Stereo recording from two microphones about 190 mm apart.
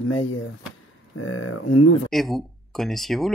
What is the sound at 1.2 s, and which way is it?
Speech, 90° left.